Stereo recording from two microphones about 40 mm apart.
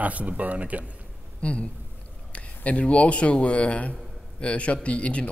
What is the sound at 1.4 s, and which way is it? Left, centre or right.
Speech, left.